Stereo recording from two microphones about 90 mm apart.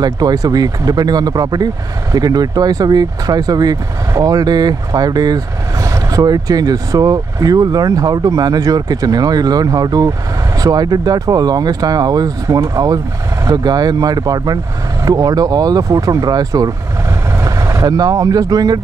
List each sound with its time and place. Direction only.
0.0 s speech: 45° right (ahead or behind)